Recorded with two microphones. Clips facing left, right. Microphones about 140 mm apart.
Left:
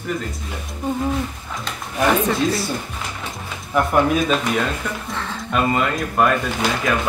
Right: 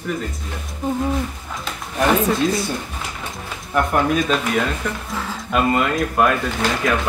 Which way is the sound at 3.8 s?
Centre (ahead or behind).